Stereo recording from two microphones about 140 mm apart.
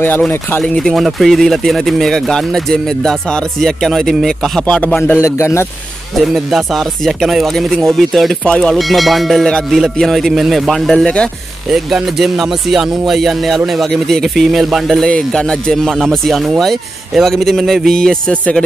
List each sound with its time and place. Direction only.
0.0 s speech: 15° left (ahead or behind)
6.3 s speech: centre (ahead or behind)